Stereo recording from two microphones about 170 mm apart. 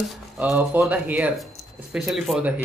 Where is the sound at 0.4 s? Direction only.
10° right (ahead or behind).